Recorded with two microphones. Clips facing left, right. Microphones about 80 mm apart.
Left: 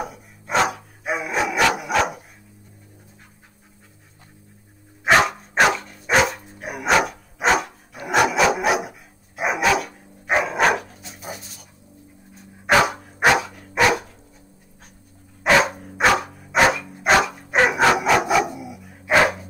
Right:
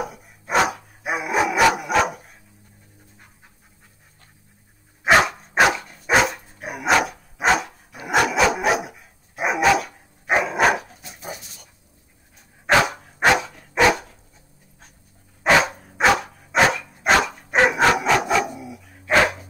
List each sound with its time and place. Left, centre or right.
0.0 s dog: centre
5.0 s dog: centre
12.6 s dog: centre
15.4 s dog: centre